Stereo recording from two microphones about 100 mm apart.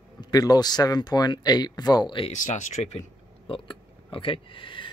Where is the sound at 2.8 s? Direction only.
90° left.